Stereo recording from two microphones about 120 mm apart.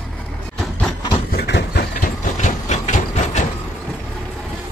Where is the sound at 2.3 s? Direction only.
85° left.